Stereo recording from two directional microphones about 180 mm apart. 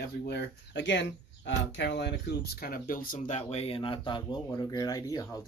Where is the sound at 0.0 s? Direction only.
65° left (ahead or behind).